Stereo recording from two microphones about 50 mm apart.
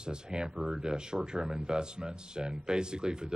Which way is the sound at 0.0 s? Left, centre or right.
Centre.